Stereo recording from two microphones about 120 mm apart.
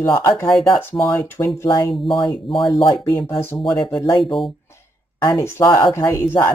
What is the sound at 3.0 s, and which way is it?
Speech, 30° left (ahead or behind).